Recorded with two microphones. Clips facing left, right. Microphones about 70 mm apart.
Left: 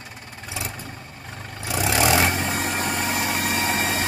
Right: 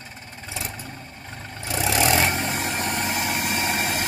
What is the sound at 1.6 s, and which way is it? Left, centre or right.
Vehicle, centre.